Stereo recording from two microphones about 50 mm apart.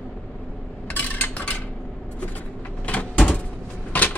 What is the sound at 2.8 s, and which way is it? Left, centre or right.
Door, left.